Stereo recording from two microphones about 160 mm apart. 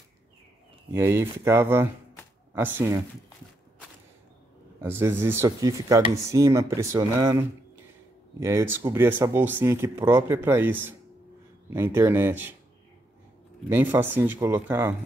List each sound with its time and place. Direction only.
0.9 s speech: 15° right (ahead or behind)
4.7 s speech: 15° right (ahead or behind)
13.7 s speech: 10° right (ahead or behind)